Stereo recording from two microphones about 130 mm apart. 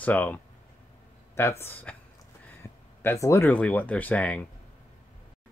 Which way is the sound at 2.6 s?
20° left (ahead or behind).